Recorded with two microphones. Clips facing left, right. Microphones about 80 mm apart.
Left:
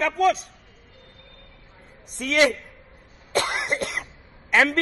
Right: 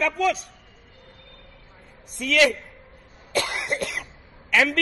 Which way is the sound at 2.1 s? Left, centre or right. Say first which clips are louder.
Even; left.